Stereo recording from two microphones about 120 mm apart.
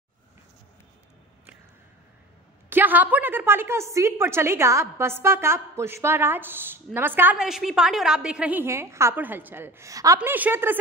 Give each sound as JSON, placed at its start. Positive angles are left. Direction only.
{"t": 2.7, "sound": "a woman's voice", "side_deg": -15}
{"t": 7.3, "sound": "a woman's voice", "side_deg": -5}
{"t": 8.6, "sound": "a woman's voice", "side_deg": -20}
{"t": 10.3, "sound": "speech", "side_deg": -15}